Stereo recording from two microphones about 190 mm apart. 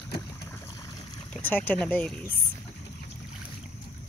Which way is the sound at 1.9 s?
10° left (ahead or behind).